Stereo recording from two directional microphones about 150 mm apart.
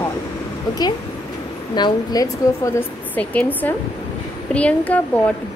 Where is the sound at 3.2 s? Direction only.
10° left (ahead or behind).